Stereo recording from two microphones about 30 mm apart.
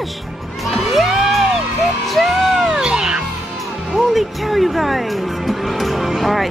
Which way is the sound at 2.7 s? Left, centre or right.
Right.